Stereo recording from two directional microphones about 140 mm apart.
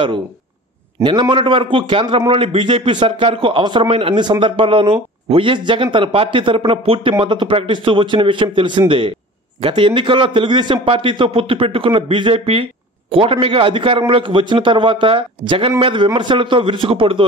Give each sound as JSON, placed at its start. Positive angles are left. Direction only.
{"t": 1.0, "sound": "a man's voice", "side_deg": -20}
{"t": 1.3, "sound": "speech", "side_deg": -35}